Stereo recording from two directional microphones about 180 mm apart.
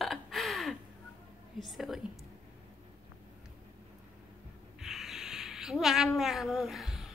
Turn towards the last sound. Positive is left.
turn(degrees=0)  # may be behind; listen again after turning